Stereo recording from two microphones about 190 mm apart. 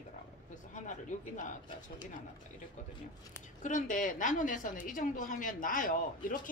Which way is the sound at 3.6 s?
45° left (ahead or behind).